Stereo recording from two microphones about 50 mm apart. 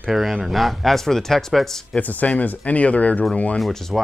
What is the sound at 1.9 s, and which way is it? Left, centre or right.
Speech, left.